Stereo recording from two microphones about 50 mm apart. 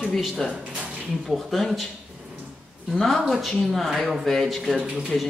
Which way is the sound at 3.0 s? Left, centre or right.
Centre.